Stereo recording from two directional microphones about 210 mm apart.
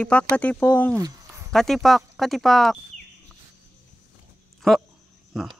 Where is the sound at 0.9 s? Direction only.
15° right (ahead or behind).